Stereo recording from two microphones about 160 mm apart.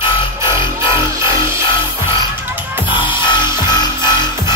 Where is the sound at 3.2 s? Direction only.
30° left (ahead or behind).